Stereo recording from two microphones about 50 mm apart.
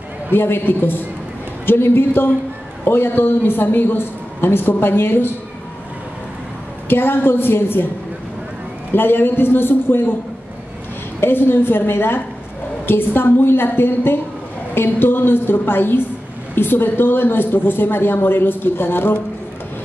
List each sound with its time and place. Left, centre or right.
0.3 s speech: left
6.9 s speech: left
8.9 s speech: left
11.1 s speech: left